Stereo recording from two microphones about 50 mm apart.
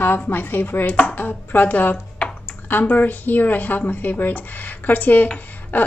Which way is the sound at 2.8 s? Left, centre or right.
Left.